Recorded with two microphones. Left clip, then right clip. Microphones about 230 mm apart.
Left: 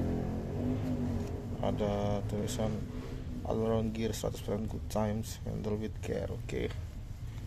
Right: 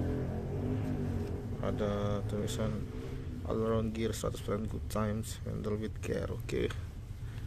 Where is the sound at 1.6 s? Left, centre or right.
Centre.